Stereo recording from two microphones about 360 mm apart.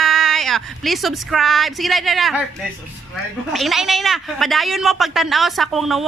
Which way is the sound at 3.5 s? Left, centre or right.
Centre.